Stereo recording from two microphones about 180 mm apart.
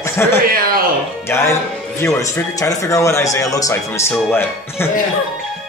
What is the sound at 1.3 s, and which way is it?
Speech, 15° left (ahead or behind).